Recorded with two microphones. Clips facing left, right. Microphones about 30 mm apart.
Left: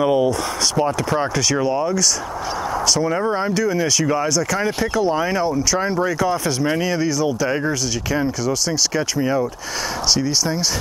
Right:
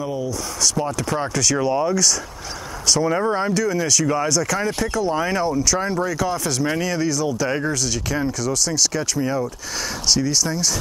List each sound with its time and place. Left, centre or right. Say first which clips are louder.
0.0 s speech: left 9 dB; left
0.7 s speech: left 4 dB; centre
1.7 s speech: even; centre
3.5 s speech: left 1 dB; centre
4.1 s speech: left 1 dB; centre